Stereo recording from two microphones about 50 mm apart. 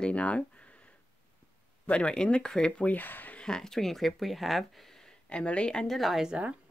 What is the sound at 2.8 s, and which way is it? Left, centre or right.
Speech, left.